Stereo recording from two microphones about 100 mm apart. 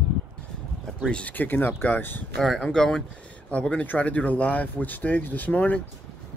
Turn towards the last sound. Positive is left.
turn(degrees=15)  # may be behind; listen again after turning